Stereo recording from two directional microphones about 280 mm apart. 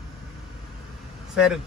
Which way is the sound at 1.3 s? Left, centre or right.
Centre.